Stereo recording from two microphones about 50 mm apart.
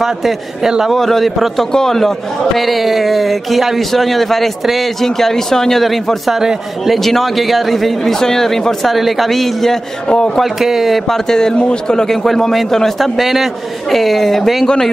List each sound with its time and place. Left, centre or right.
0.0 s a man's voice: centre
0.9 s a man's voice: centre
10.4 s a man's voice: centre
11.1 s a man's voice: centre
12.1 s a man's voice: centre